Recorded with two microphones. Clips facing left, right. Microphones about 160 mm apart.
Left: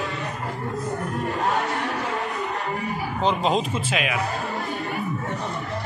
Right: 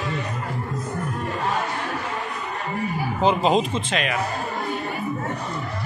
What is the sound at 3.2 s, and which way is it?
Speech, centre (ahead or behind).